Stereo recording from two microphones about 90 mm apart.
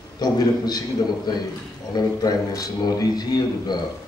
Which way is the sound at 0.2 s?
50° left (ahead or behind).